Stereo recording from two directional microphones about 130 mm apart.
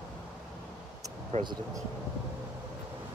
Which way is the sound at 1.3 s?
55° right (ahead or behind).